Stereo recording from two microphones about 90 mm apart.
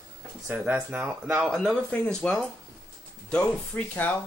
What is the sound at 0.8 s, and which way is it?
Speech, 15° right (ahead or behind).